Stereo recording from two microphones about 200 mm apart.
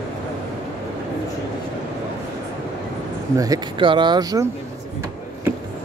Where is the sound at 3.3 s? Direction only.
20° right (ahead or behind).